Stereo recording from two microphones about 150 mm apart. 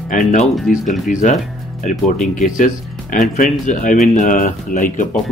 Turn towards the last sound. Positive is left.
turn(degrees=60)  # may be behind; listen again after turning